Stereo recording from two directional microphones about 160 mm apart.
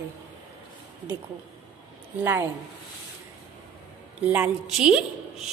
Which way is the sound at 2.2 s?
15° right (ahead or behind).